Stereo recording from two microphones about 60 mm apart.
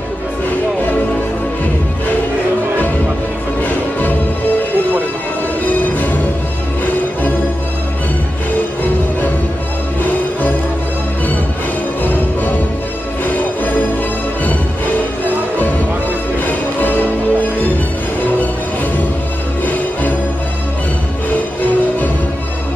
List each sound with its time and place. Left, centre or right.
0.5 s music: left
3.6 s music: left
13.2 s music: left
16.4 s music: left
19.6 s music: left